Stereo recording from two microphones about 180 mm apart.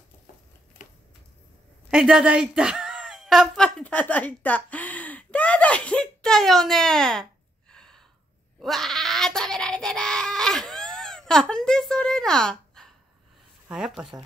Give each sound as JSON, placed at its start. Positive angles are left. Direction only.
{"t": 0.8, "sound": "typewriter", "side_deg": 45}
{"t": 1.9, "sound": "speech", "side_deg": -5}
{"t": 7.7, "sound": "a sound", "side_deg": 5}
{"t": 13.7, "sound": "speech", "side_deg": -5}